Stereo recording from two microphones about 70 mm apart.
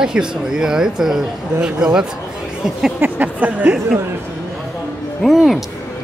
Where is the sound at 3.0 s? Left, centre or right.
Right.